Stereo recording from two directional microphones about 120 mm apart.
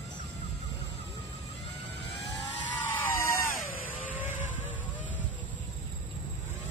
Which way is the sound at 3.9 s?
15° right (ahead or behind).